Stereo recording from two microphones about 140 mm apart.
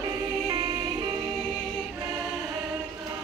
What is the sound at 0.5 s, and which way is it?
Music, 30° right (ahead or behind).